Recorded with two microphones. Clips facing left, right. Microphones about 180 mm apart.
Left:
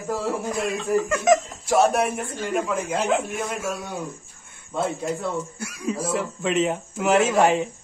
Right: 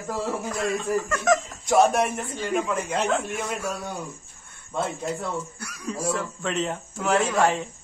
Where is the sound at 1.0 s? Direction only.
15° left (ahead or behind).